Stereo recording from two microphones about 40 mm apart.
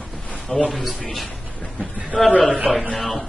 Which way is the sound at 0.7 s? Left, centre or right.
Centre.